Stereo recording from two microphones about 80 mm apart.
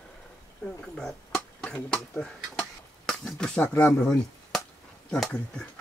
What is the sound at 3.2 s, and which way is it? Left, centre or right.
Speech, centre.